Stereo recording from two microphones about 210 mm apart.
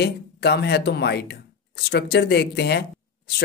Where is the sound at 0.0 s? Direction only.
50° left (ahead or behind).